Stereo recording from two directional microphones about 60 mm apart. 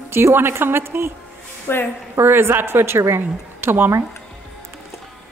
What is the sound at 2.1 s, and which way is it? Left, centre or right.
A woman's voice, right.